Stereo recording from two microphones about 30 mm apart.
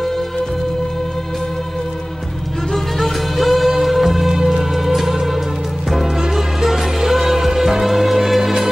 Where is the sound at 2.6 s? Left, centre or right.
Centre.